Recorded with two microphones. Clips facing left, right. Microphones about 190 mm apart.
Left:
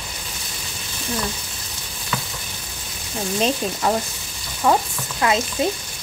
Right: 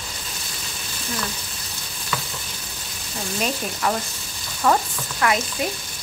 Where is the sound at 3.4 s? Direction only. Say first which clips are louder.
Left 3 dB; 25° left (ahead or behind).